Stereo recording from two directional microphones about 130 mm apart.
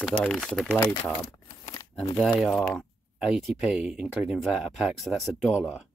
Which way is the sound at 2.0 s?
5° left (ahead or behind).